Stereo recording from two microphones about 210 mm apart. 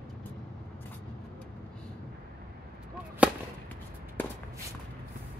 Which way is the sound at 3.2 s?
5° right (ahead or behind).